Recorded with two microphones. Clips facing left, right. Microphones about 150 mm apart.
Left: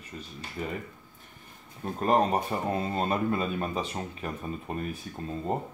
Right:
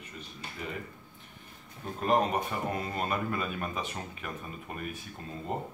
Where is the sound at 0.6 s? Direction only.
35° left (ahead or behind).